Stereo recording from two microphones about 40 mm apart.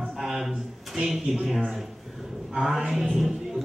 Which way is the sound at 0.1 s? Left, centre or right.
Centre.